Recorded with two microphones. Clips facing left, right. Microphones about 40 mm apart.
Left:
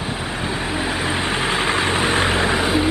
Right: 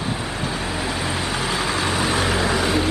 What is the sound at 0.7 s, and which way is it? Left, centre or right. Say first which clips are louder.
Vehicle: left 3 dB; left.